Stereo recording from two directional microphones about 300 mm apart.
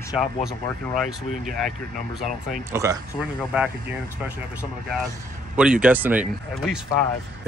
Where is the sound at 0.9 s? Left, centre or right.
Centre.